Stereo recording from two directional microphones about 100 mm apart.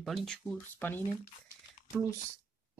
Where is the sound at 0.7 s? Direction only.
20° left (ahead or behind).